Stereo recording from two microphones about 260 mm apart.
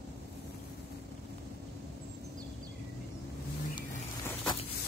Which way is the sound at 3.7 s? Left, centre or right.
Centre.